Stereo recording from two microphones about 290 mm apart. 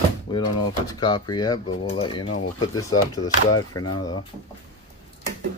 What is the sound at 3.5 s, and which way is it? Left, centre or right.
Speech, left.